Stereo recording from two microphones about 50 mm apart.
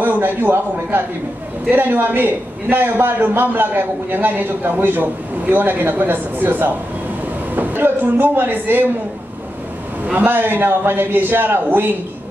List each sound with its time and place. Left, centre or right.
0.0 s a man's voice: right
10.1 s a man's voice: right